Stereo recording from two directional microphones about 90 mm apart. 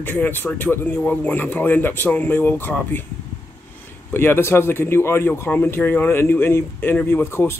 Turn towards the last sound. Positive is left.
turn(degrees=25)  # may be behind; listen again after turning